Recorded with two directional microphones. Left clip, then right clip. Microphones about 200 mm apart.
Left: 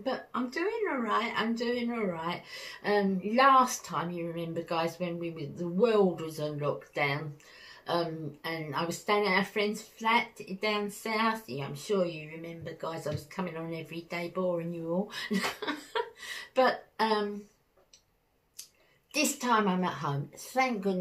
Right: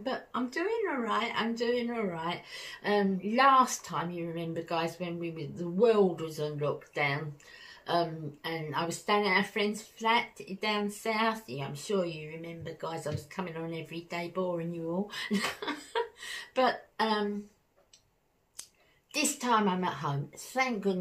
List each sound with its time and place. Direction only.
0.0 s a woman's voice: 10° right (ahead or behind)
19.1 s a woman's voice: 5° right (ahead or behind)